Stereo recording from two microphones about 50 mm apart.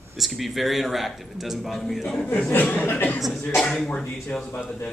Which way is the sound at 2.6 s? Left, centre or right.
Left.